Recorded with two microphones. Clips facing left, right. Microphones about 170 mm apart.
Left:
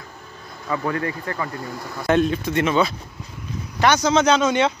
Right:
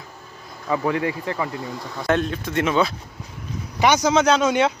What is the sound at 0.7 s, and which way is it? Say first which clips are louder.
Speech: right 2 dB; 15° right (ahead or behind).